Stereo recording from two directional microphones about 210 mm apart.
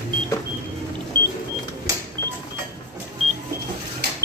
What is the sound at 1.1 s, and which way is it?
Power windows, 20° right (ahead or behind).